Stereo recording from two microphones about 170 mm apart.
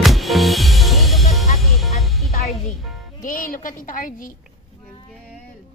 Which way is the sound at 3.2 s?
55° left (ahead or behind).